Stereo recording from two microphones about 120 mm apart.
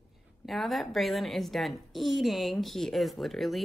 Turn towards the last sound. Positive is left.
turn(degrees=0)  # may be behind; listen again after turning